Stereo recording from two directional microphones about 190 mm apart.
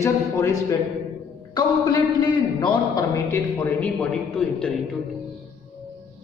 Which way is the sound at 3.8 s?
5° left (ahead or behind).